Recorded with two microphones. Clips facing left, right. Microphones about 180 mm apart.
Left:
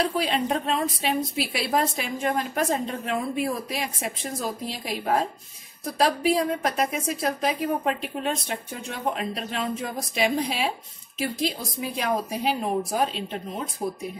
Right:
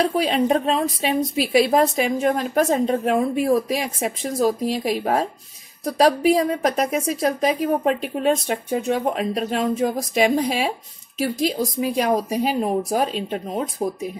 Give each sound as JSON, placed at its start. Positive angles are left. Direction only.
{"t": 0.0, "sound": "a woman's voice", "side_deg": -45}